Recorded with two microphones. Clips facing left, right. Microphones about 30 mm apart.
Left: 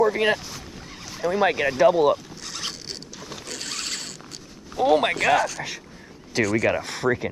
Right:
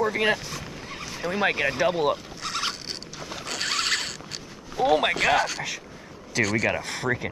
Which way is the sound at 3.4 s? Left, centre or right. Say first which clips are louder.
Right 7 dB; right.